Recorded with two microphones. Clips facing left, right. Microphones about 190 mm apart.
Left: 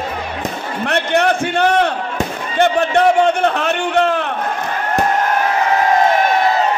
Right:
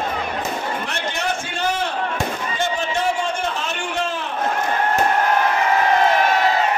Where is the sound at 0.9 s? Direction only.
65° left (ahead or behind).